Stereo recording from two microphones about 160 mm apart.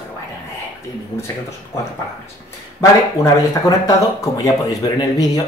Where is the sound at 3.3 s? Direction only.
20° left (ahead or behind).